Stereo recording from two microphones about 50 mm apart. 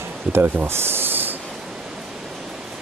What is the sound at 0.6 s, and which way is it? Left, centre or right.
Snake, right.